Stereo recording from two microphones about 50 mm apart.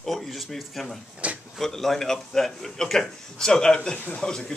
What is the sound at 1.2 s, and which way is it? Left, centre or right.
Speech, right.